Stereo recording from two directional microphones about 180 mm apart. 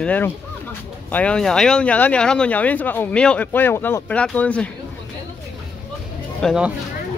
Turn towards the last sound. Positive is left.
turn(degrees=0)  # may be behind; listen again after turning